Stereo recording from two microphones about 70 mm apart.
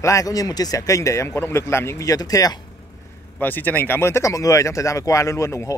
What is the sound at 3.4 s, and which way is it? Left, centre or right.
Speech, left.